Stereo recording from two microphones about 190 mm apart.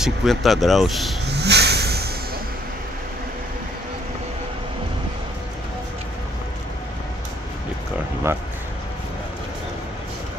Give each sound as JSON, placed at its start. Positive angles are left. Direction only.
{"t": 0.0, "sound": "speech", "side_deg": 0}
{"t": 1.3, "sound": "vehicle", "side_deg": -60}